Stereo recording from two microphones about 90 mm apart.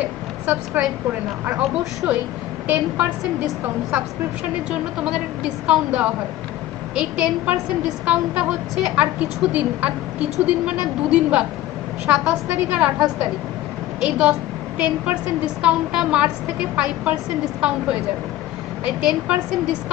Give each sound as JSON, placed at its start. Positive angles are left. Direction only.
{"t": 0.0, "sound": "a sound", "side_deg": -10}
{"t": 2.0, "sound": "a woman's voice", "side_deg": -15}
{"t": 4.6, "sound": "a woman's voice", "side_deg": -5}